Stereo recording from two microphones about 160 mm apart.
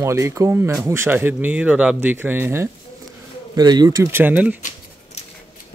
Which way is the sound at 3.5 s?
25° right (ahead or behind).